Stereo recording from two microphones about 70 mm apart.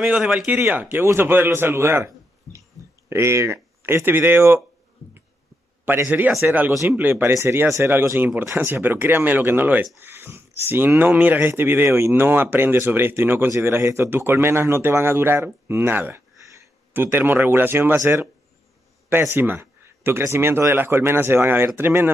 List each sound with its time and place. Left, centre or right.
0.0 s a man's voice: centre
0.5 s a man's voice: right
6.0 s speech: right
8.5 s speech: right